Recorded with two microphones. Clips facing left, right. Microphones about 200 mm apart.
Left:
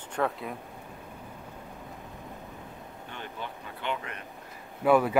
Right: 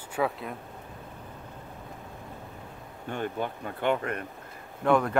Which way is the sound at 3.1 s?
50° right (ahead or behind).